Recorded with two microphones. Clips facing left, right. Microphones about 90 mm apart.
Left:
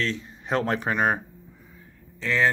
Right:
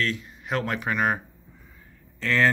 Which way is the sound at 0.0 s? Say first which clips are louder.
Even; 30° left (ahead or behind).